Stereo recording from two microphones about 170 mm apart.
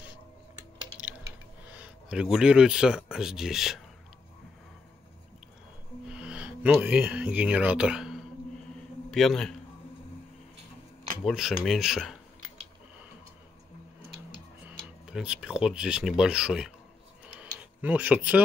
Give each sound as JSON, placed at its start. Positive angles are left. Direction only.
{"t": 1.7, "sound": "speech", "side_deg": -5}
{"t": 6.0, "sound": "speech", "side_deg": -5}
{"t": 11.2, "sound": "speech", "side_deg": 0}
{"t": 14.8, "sound": "speech", "side_deg": -5}
{"t": 17.4, "sound": "tick-tock", "side_deg": -10}